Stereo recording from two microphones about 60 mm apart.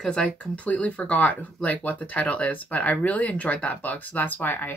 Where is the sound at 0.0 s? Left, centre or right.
Centre.